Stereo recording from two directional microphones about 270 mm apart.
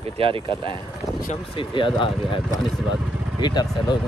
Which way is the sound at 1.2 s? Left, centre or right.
Left.